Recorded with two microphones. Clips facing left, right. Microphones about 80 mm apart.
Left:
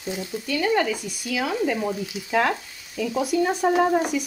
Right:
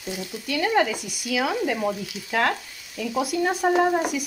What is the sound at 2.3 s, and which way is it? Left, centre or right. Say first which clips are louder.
Frying: left 1 dB; centre.